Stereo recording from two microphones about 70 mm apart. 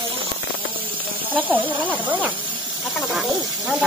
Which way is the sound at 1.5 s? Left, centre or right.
Right.